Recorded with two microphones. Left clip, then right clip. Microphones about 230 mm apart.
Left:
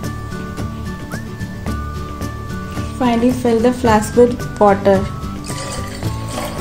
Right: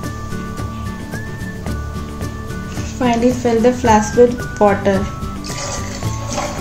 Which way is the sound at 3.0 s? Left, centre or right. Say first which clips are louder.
Right 1 dB; left.